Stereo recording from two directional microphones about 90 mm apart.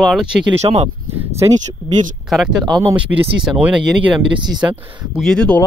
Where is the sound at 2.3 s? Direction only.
5° right (ahead or behind).